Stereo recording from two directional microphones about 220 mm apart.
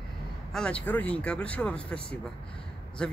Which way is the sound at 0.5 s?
5° left (ahead or behind).